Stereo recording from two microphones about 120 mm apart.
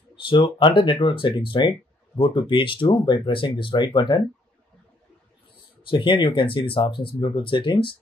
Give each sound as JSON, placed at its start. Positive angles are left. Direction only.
{"t": 0.1, "sound": "speech", "side_deg": 45}
{"t": 5.8, "sound": "speech", "side_deg": 45}